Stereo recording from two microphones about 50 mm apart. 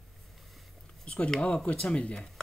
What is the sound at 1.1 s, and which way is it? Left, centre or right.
Speech, centre.